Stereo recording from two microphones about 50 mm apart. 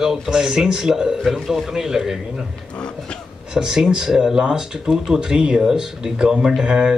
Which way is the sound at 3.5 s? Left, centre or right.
Centre.